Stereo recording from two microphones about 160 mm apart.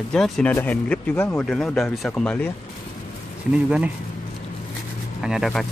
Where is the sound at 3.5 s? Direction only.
5° right (ahead or behind).